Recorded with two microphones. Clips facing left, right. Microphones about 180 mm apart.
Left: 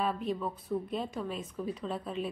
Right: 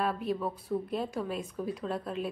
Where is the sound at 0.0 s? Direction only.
5° right (ahead or behind).